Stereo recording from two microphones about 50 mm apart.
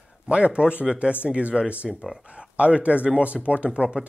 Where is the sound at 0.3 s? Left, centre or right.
Right.